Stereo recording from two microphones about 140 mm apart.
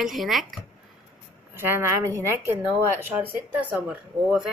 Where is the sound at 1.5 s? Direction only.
15° right (ahead or behind).